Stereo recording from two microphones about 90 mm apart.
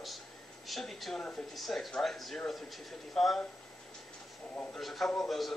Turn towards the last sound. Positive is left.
turn(degrees=0)  # may be behind; listen again after turning